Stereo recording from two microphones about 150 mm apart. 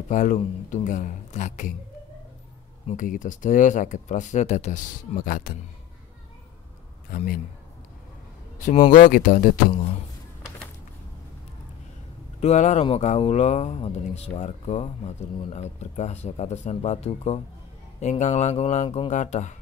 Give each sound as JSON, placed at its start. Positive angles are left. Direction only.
{"t": 0.1, "sound": "speech", "side_deg": 55}
{"t": 2.9, "sound": "speech", "side_deg": 60}
{"t": 7.1, "sound": "a man's voice", "side_deg": 70}
{"t": 8.5, "sound": "a man's voice", "side_deg": 55}
{"t": 12.4, "sound": "speech", "side_deg": 50}